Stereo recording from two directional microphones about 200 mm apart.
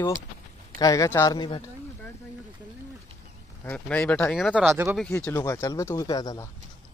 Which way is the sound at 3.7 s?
5° left (ahead or behind).